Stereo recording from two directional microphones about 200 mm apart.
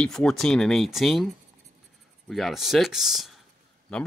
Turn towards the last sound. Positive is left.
turn(degrees=5)  # may be behind; listen again after turning